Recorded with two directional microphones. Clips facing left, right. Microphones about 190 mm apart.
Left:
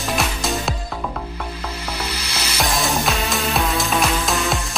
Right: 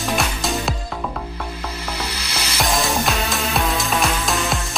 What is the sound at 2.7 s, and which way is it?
Music, centre (ahead or behind).